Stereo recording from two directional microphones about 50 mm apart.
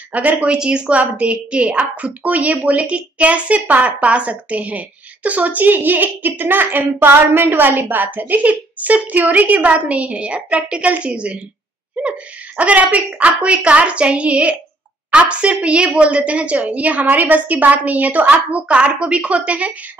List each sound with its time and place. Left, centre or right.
0.1 s a woman's voice: right